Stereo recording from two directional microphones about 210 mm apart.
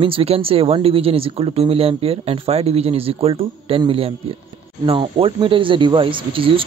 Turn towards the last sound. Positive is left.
turn(degrees=-25)  # may be behind; listen again after turning